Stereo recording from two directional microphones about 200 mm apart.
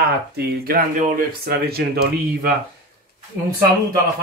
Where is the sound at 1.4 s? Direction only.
50° right (ahead or behind).